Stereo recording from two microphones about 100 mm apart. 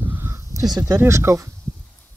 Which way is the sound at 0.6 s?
40° right (ahead or behind).